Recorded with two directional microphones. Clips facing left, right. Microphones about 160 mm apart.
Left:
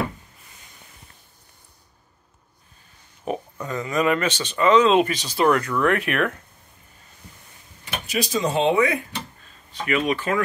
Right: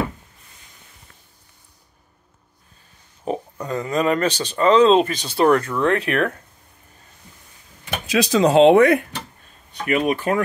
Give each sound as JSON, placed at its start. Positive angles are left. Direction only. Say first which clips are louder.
{"t": 3.3, "sound": "speech", "louder": "right 3 dB", "side_deg": -35}
{"t": 8.1, "sound": "speech", "louder": "right 7 dB", "side_deg": -85}
{"t": 9.8, "sound": "speech", "louder": "right 3 dB", "side_deg": -45}